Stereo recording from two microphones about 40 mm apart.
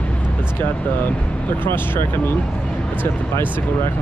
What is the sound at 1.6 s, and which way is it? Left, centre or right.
Speech, left.